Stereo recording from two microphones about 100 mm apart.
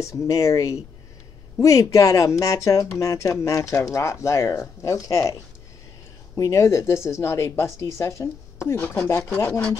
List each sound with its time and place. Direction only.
0.0 s speech: 35° left (ahead or behind)
6.3 s a woman's voice: 30° left (ahead or behind)